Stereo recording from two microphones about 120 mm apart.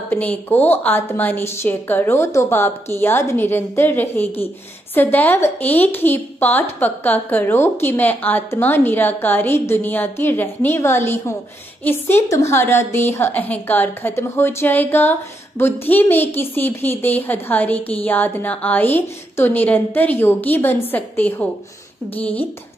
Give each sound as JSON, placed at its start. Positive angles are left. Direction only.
{"t": 0.1, "sound": "a woman's voice", "side_deg": 15}